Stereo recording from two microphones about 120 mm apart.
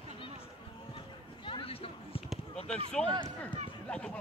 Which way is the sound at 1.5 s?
50° left (ahead or behind).